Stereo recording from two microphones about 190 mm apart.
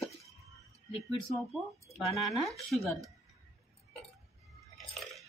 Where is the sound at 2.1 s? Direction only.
Centre (ahead or behind).